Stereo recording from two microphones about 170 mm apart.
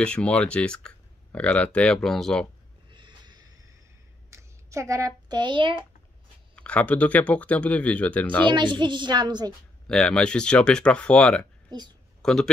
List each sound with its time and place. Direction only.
0.0 s speech: 5° left (ahead or behind)
2.9 s a sound: 25° right (ahead or behind)
4.3 s speech: 15° right (ahead or behind)
6.5 s speech: 10° left (ahead or behind)
8.5 s a child's voice: 25° right (ahead or behind)
9.8 s speech: 5° left (ahead or behind)